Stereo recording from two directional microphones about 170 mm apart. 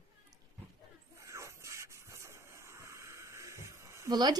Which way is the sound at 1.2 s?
15° right (ahead or behind).